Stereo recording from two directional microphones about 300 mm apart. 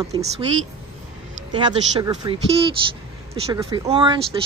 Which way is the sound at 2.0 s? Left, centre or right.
Centre.